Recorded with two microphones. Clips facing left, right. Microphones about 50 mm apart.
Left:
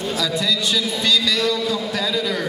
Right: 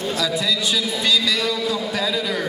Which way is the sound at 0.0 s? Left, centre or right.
Centre.